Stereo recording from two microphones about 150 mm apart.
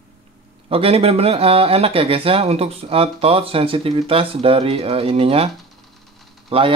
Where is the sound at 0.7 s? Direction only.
40° right (ahead or behind).